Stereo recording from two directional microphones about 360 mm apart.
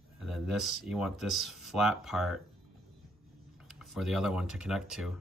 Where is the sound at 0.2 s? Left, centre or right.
Centre.